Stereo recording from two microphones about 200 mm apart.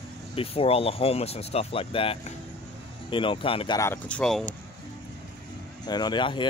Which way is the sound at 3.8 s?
10° left (ahead or behind).